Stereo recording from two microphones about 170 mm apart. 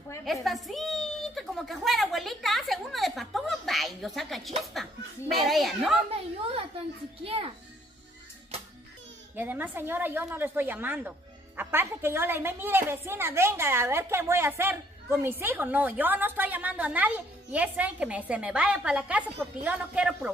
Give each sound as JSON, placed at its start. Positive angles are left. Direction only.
{"t": 0.2, "sound": "a sound", "side_deg": 0}
{"t": 5.3, "sound": "a woman's voice", "side_deg": 0}
{"t": 7.2, "sound": "a child's voice", "side_deg": -35}
{"t": 9.3, "sound": "a woman's voice", "side_deg": -10}